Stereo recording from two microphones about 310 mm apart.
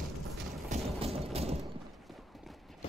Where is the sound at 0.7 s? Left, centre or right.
Centre.